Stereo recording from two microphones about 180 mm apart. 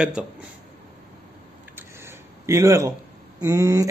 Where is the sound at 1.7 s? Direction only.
15° right (ahead or behind).